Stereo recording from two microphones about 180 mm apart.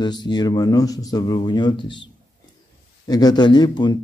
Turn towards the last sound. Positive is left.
turn(degrees=25)  # may be behind; listen again after turning